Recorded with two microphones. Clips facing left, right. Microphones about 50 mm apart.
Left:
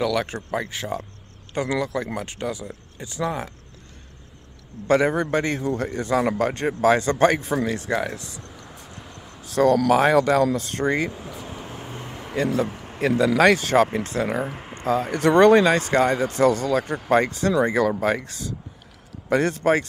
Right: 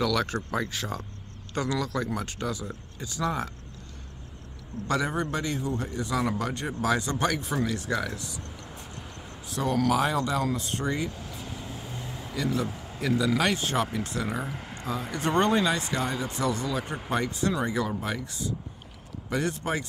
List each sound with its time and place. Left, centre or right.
0.0 s speech: centre
4.8 s a man's voice: left
9.5 s speech: left
9.9 s speech: left
11.1 s vehicle: left
13.4 s speech: left
13.8 s a man's voice: left
15.1 s speech: left